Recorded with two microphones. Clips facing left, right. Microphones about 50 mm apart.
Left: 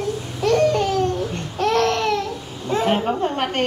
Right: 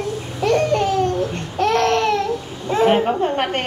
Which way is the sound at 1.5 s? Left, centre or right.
Centre.